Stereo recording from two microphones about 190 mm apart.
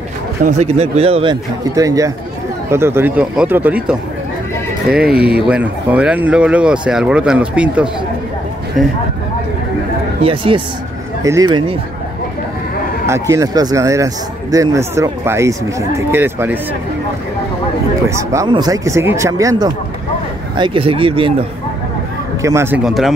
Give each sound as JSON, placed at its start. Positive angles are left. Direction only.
{"t": 0.4, "sound": "a man's voice", "side_deg": -40}
{"t": 5.1, "sound": "speech", "side_deg": -55}
{"t": 5.5, "sound": "speech", "side_deg": -5}
{"t": 10.2, "sound": "speech", "side_deg": -30}
{"t": 13.0, "sound": "speech", "side_deg": -15}
{"t": 18.3, "sound": "speech", "side_deg": -20}
{"t": 22.4, "sound": "speech", "side_deg": -15}
{"t": 22.8, "sound": "speech", "side_deg": 0}